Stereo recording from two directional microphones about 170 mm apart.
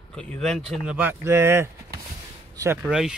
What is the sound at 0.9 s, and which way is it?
Speech, 15° right (ahead or behind).